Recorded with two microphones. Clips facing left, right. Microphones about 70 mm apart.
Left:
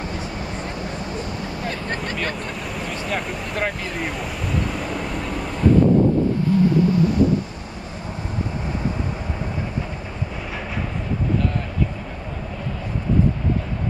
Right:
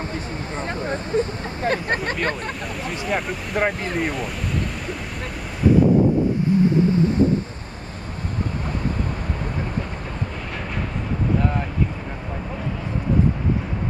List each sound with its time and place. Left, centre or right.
0.6 s speech: right
3.1 s speech: centre
6.6 s vehicle: right